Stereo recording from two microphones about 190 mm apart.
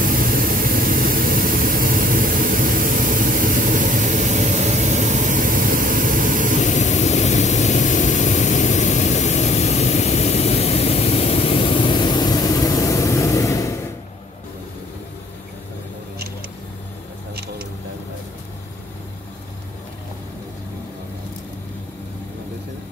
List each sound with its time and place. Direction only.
0.0 s vehicle: 50° right (ahead or behind)
6.6 s vehicle: 40° left (ahead or behind); by 13.7 s 15° left (ahead or behind)